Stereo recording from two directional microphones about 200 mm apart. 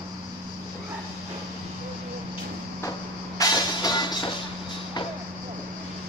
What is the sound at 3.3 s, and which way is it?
Music, 20° left (ahead or behind).